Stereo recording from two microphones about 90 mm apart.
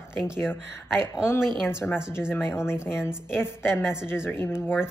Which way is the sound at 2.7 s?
30° left (ahead or behind).